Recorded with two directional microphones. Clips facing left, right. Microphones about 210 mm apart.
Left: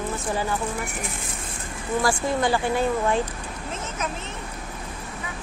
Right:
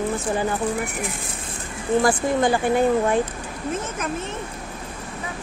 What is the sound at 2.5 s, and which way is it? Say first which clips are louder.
Speech: right 4 dB; 15° right (ahead or behind).